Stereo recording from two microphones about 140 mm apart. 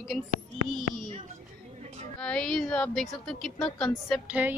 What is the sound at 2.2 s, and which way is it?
A woman's voice, 5° left (ahead or behind).